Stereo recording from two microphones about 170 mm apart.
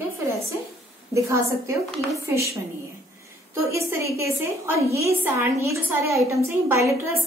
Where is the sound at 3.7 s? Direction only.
15° right (ahead or behind).